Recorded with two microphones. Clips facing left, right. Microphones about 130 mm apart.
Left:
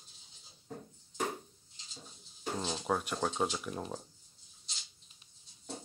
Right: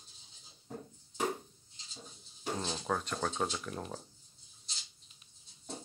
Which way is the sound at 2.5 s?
5° left (ahead or behind).